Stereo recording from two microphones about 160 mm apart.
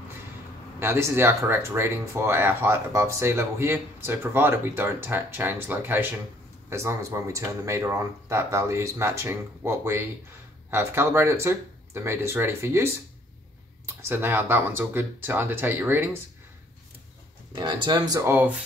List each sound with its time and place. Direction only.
0.7 s speech: 15° right (ahead or behind)
17.6 s speech: 30° right (ahead or behind)
18.3 s speech: 10° right (ahead or behind)